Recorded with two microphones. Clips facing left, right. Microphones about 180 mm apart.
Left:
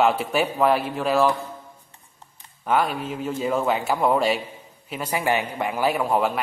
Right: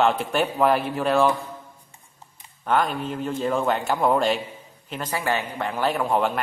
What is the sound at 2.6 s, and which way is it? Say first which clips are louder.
Speech: even; 5° left (ahead or behind).